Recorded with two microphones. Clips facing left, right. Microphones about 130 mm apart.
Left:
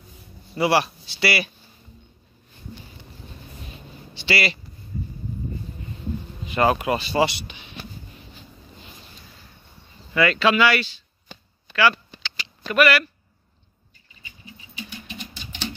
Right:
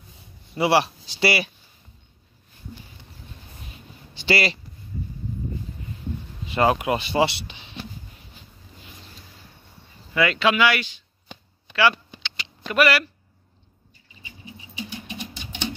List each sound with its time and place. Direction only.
0.6 s speech: 25° right (ahead or behind)
4.1 s a sound: 40° right (ahead or behind)
6.4 s speech: 20° right (ahead or behind)
10.1 s speech: 15° right (ahead or behind)
11.7 s a sound: 20° right (ahead or behind)
12.7 s speech: 25° right (ahead or behind)
14.2 s patter: 20° right (ahead or behind)